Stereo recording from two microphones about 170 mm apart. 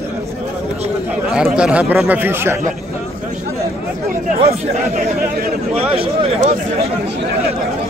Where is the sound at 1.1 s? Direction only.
5° right (ahead or behind).